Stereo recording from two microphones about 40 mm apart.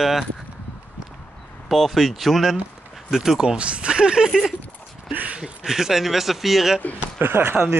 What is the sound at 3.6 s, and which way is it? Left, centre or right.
Speech, right.